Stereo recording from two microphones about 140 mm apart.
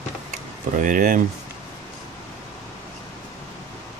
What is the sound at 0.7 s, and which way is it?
Speech, 75° right (ahead or behind).